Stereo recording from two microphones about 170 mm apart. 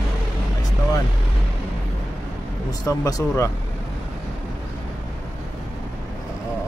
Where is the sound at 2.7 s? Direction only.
20° left (ahead or behind).